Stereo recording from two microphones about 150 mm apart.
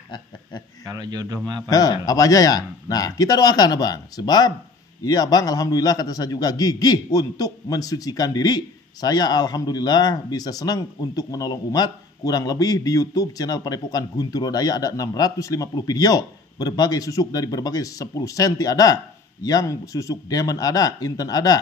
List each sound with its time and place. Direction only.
0.8 s speech: 25° right (ahead or behind)
1.7 s a man's voice: 25° left (ahead or behind)